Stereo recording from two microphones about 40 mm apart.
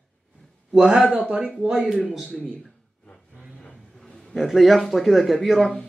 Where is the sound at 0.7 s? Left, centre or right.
Right.